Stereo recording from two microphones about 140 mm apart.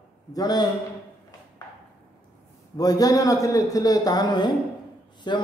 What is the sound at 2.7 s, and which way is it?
A man's voice, 25° left (ahead or behind).